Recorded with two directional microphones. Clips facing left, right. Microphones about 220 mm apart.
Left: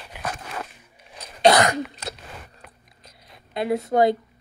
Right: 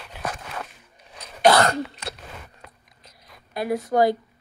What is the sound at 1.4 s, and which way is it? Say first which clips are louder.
Cough: even; 15° left (ahead or behind).